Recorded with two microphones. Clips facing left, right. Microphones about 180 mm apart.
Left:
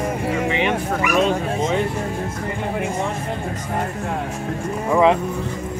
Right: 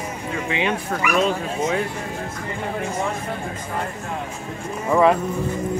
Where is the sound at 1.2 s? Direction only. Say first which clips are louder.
Left 2 dB; 20° left (ahead or behind).